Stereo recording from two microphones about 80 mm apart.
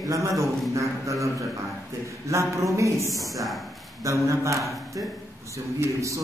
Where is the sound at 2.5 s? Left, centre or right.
Right.